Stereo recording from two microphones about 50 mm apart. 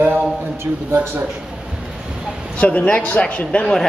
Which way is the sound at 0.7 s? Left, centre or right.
Right.